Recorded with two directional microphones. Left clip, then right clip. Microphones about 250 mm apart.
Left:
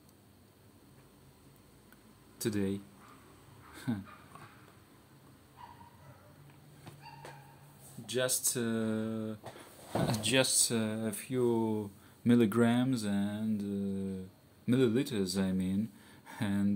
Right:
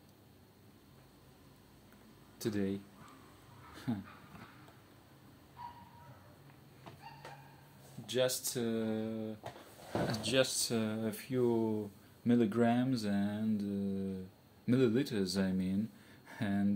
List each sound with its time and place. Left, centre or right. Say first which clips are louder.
2.3 s speech: left 2 dB; centre
3.7 s a sound: left 2 dB; centre
8.1 s speech: even; centre
12.3 s speech: left 3 dB; left